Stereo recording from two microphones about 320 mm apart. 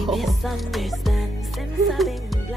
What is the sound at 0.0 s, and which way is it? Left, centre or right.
Music, centre.